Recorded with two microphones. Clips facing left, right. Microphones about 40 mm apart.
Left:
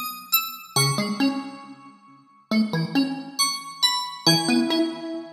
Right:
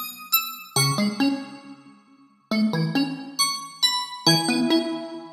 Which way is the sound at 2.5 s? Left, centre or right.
Centre.